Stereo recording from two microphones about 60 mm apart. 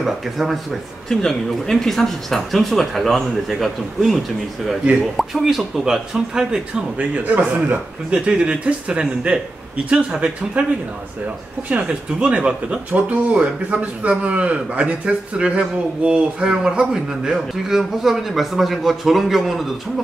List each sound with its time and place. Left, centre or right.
0.0 s speech: centre
1.0 s speech: centre
7.0 s speech: right
11.7 s speech: right; by 19.7 s centre